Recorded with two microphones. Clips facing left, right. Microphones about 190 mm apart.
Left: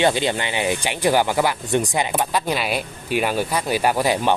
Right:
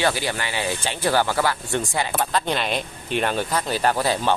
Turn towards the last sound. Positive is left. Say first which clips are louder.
# left 2 dB
turn(degrees=15)  # may be behind; listen again after turning